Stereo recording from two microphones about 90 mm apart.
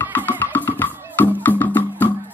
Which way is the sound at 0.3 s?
20° left (ahead or behind).